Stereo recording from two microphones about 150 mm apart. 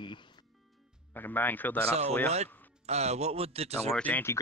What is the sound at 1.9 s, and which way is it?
Speech, 45° right (ahead or behind).